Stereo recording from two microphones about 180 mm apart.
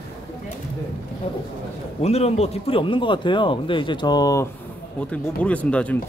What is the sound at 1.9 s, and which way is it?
Speech, 35° left (ahead or behind).